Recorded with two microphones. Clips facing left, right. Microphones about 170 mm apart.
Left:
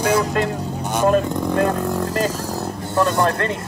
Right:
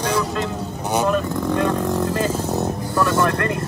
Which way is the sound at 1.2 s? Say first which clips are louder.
Left 1 dB; 15° left (ahead or behind).